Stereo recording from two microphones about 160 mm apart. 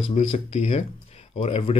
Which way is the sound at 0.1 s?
45° left (ahead or behind).